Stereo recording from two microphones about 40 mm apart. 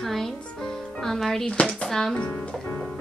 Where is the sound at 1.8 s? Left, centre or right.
Centre.